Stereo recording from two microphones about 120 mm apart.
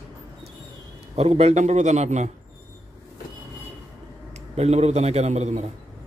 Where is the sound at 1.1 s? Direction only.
60° right (ahead or behind).